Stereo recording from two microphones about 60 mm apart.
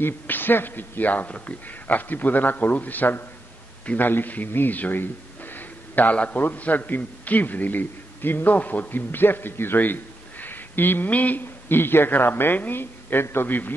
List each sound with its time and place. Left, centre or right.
0.0 s a man's voice: left